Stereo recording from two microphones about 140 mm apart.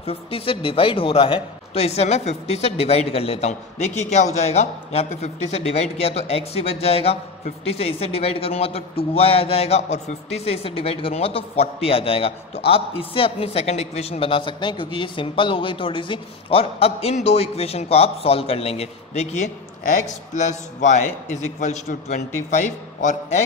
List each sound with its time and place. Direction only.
0.0 s a man's voice: 45° left (ahead or behind); by 23.4 s 60° left (ahead or behind)